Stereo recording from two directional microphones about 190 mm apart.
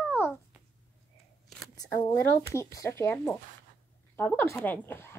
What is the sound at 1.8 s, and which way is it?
A child's voice, 15° left (ahead or behind).